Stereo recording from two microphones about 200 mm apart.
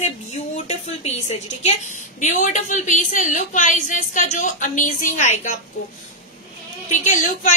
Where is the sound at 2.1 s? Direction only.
35° left (ahead or behind).